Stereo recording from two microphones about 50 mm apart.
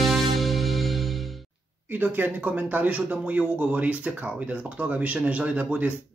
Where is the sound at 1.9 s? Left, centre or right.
Right.